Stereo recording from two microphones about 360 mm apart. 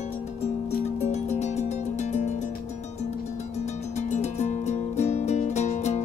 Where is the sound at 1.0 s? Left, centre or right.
Centre.